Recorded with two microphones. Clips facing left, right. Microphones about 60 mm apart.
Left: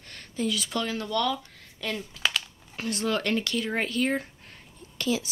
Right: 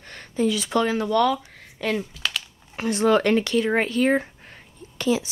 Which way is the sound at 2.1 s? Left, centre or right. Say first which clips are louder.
Left 1 dB; centre.